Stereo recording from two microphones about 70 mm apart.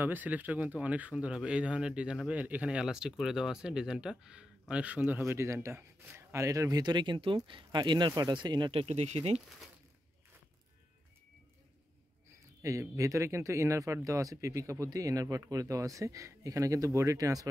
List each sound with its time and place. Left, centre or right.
0.0 s speech: right
5.2 s speech: right
6.7 s speech: right
12.6 s speech: right